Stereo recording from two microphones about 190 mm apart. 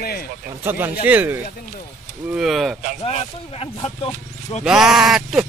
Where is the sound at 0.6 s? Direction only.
10° right (ahead or behind).